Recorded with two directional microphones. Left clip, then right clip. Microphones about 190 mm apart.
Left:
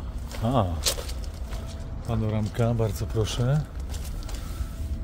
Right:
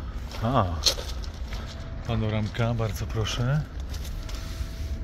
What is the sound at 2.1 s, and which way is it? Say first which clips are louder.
Speech: even; 15° left (ahead or behind).